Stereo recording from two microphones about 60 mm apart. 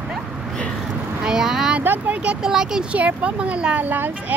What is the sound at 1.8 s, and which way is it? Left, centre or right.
Speech, right.